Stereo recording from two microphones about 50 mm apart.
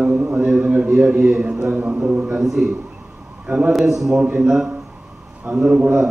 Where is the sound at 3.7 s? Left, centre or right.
Centre.